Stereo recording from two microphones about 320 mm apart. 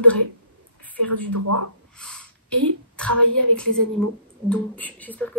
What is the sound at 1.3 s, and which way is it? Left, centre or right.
Speech, right.